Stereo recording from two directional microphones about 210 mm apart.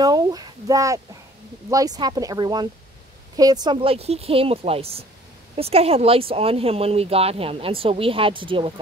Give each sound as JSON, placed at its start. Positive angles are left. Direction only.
{"t": 0.0, "sound": "speech", "side_deg": -20}